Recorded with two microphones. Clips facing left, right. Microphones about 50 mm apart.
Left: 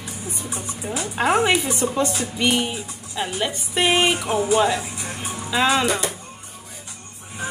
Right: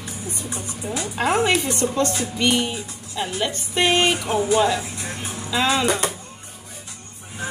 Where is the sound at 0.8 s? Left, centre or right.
Left.